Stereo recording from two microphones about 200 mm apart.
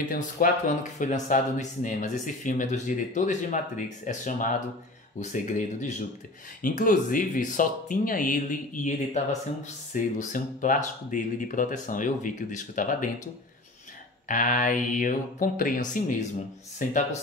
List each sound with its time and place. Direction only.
0.1 s speech: 40° left (ahead or behind)
14.2 s speech: 40° left (ahead or behind)